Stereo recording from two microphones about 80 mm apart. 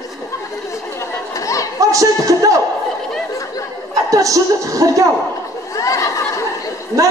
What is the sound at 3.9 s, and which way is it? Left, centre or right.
A man's voice, right.